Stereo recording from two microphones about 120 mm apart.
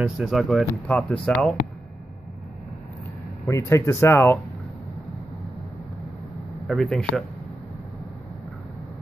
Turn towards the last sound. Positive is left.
turn(degrees=5)  # may be behind; listen again after turning